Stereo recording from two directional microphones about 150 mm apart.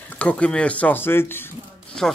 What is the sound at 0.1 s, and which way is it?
Speech, 10° left (ahead or behind).